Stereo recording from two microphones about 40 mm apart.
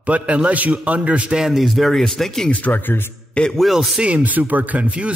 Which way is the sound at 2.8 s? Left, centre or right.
Left.